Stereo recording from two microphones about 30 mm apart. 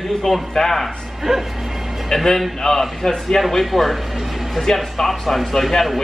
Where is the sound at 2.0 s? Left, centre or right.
Centre.